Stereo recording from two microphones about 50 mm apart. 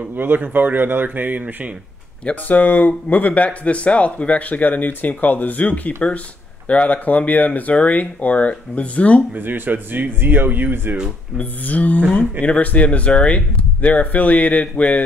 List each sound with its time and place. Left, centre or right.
0.1 s speech: right
2.4 s speech: left
9.3 s speech: right
11.3 s speech: left